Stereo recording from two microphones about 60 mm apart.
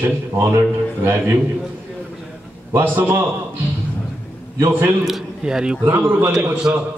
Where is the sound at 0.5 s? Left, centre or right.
Right.